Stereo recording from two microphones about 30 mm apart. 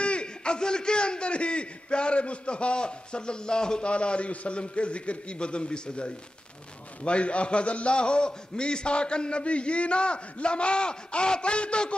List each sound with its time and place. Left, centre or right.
0.0 s a man's voice: left
3.8 s a man's voice: left
4.3 s a man's voice: left
4.6 s a man's voice: left